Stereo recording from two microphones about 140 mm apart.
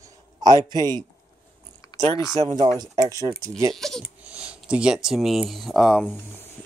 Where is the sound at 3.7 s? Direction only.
Centre (ahead or behind).